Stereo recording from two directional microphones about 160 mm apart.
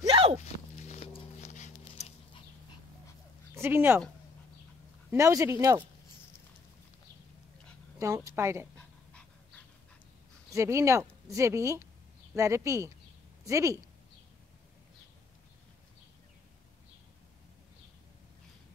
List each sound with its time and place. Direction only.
0.1 s walk: 40° right (ahead or behind)
0.4 s horse: 45° left (ahead or behind)
3.5 s speech: 15° right (ahead or behind)
5.1 s speech: 20° right (ahead or behind)
8.0 s speech: 20° right (ahead or behind)
10.5 s speech: 20° right (ahead or behind)